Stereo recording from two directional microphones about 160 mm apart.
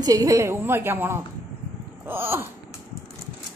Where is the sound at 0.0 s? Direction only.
20° right (ahead or behind).